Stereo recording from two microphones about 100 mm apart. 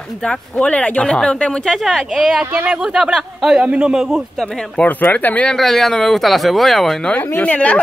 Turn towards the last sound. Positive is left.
turn(degrees=15)  # may be behind; listen again after turning